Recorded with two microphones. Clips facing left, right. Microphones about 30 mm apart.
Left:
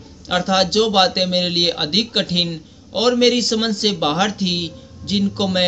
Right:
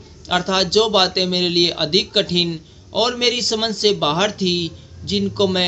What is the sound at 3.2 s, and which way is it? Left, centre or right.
Speech, centre.